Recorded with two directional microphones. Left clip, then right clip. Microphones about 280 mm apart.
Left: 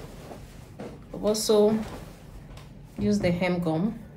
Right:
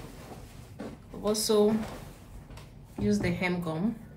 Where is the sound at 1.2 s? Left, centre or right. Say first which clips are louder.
Left 4 dB; centre.